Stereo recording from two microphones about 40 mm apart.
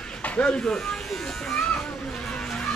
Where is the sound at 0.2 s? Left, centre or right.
Left.